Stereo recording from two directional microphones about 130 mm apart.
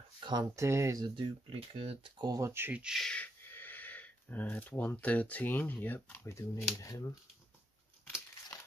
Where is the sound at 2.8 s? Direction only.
Centre (ahead or behind).